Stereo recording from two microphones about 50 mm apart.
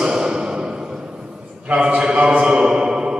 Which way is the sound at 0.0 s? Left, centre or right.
Centre.